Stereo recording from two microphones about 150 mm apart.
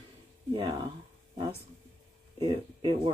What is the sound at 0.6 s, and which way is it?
Speech, 30° right (ahead or behind).